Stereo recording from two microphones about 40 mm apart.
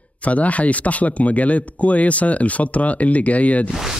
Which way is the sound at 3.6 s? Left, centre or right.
Centre.